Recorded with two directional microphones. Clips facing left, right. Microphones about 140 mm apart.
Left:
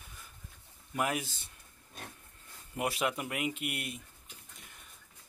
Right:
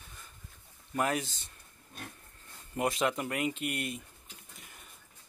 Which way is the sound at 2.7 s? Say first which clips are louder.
Right 3 dB; 10° left (ahead or behind).